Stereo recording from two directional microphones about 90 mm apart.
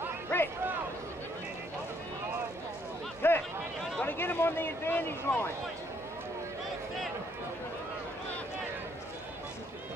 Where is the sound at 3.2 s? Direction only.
25° left (ahead or behind).